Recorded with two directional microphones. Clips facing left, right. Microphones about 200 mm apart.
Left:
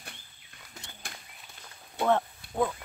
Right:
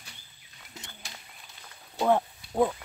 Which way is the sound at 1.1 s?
50° left (ahead or behind).